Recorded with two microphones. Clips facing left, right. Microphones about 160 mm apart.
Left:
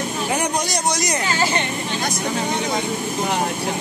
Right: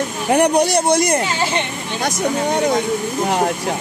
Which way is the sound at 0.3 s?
60° right (ahead or behind).